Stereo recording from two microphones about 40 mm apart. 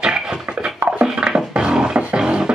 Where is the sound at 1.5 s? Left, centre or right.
Right.